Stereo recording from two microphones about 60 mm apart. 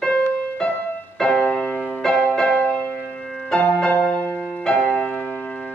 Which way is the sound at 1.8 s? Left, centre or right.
Centre.